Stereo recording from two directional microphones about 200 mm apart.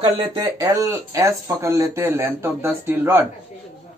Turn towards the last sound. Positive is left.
turn(degrees=-10)  # may be behind; listen again after turning